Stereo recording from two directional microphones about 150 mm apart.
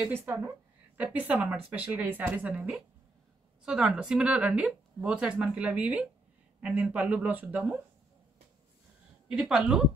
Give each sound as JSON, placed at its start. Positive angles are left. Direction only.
{"t": 0.0, "sound": "a woman's voice", "side_deg": -15}
{"t": 9.3, "sound": "speech", "side_deg": -5}